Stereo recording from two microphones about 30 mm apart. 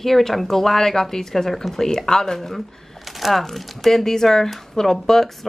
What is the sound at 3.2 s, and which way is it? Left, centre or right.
Speech, centre.